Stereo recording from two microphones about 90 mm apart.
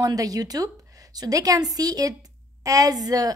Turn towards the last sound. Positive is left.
turn(degrees=-45)  # may be behind; listen again after turning